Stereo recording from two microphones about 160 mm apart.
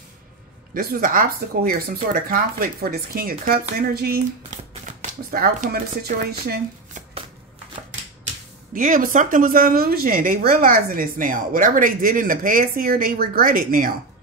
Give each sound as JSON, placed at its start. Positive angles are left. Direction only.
{"t": 0.7, "sound": "a woman's voice", "side_deg": -65}
{"t": 4.8, "sound": "speech", "side_deg": -60}
{"t": 8.7, "sound": "a woman's voice", "side_deg": -55}